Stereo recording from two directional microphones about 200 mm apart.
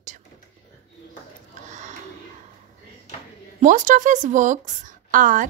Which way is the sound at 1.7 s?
35° right (ahead or behind).